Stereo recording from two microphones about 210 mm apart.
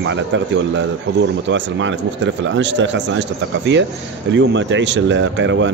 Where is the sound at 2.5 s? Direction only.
60° right (ahead or behind).